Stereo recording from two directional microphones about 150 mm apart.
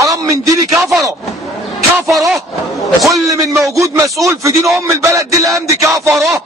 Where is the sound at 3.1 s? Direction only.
20° right (ahead or behind).